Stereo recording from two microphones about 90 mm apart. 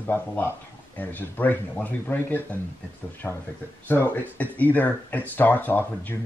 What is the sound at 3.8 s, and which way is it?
Speech, 20° left (ahead or behind).